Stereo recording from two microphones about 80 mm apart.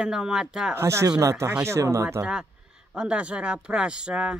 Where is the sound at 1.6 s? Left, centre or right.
Right.